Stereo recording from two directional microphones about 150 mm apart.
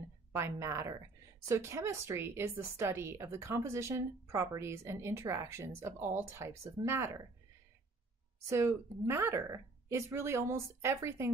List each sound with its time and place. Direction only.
0.3 s a woman's voice: 20° right (ahead or behind)
8.5 s a woman's voice: 20° right (ahead or behind)